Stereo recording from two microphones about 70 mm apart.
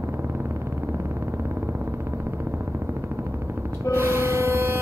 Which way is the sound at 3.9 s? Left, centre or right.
Right.